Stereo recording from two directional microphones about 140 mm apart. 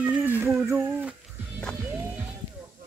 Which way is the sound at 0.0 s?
10° right (ahead or behind).